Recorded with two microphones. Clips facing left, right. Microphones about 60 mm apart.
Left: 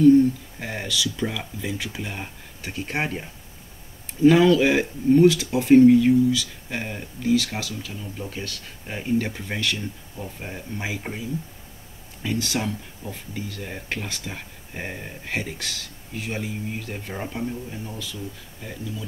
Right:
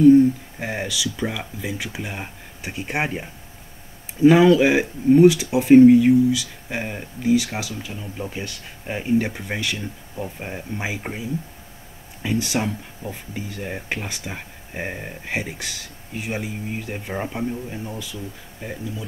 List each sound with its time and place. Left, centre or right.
0.0 s speech: centre